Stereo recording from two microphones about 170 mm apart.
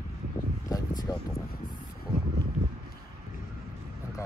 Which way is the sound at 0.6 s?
20° left (ahead or behind).